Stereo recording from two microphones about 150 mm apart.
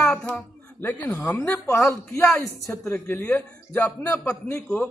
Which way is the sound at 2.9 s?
15° left (ahead or behind).